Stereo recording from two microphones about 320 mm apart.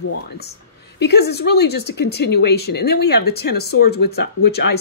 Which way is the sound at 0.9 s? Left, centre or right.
Left.